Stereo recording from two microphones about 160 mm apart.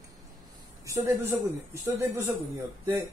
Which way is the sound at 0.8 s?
20° right (ahead or behind).